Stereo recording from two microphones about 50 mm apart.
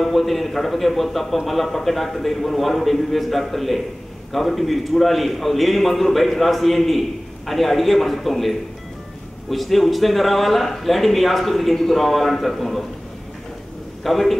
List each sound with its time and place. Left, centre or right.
0.0 s a man's voice: centre
14.0 s a man's voice: centre